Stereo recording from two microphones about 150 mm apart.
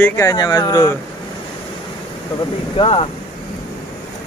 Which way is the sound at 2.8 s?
40° left (ahead or behind).